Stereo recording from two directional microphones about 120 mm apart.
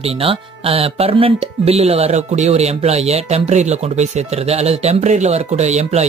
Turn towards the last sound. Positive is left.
turn(degrees=-65)  # may be behind; listen again after turning